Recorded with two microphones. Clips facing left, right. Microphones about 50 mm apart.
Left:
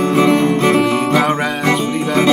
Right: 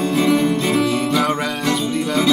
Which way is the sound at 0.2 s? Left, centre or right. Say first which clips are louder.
Left 4 dB; left.